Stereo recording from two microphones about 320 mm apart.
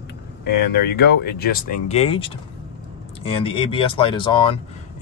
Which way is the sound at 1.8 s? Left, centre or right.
Centre.